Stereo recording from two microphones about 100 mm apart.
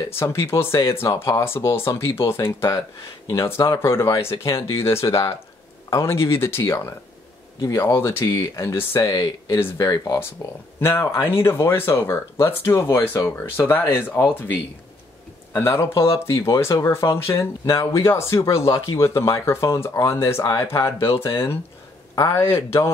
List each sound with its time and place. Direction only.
0.1 s speech: 25° left (ahead or behind)
1.1 s speech: 40° left (ahead or behind)
1.4 s speech: 25° left (ahead or behind)
9.0 s speech: 45° left (ahead or behind)
9.5 s speech: 35° left (ahead or behind)
10.8 s speech: 25° left (ahead or behind)